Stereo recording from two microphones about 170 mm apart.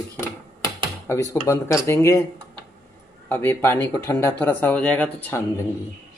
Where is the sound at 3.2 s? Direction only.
10° left (ahead or behind).